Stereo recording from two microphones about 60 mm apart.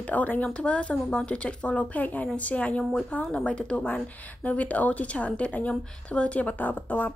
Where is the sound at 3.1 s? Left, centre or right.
Left.